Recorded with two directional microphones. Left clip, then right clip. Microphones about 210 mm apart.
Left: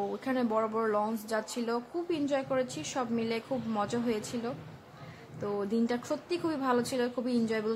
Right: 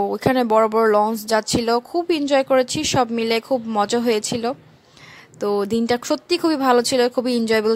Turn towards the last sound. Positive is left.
turn(degrees=-50)  # may be behind; listen again after turning